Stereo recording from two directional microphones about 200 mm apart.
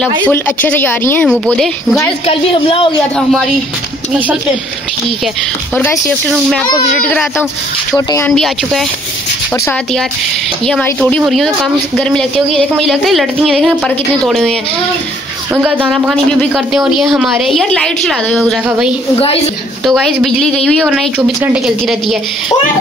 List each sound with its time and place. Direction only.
0.2 s speech: 10° left (ahead or behind)
1.3 s speech: 5° right (ahead or behind)
2.2 s speech: 25° left (ahead or behind)
5.8 s speech: 10° left (ahead or behind)
10.7 s speech: 5° left (ahead or behind)
15.5 s speech: 5° right (ahead or behind)